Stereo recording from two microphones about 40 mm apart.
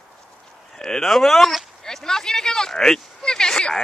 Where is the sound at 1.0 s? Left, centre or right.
Centre.